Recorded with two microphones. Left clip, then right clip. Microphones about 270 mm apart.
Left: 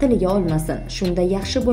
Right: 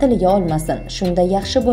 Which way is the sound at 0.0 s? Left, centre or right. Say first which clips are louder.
Right 4 dB; centre.